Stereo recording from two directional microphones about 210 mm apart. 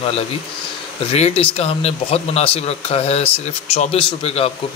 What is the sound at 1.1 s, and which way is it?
Speech, 30° left (ahead or behind).